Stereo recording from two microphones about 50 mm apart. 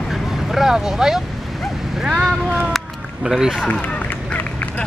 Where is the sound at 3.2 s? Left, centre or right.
Centre.